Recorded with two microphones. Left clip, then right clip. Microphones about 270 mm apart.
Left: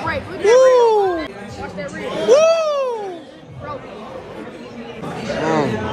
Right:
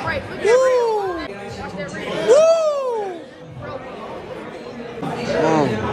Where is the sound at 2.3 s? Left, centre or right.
Centre.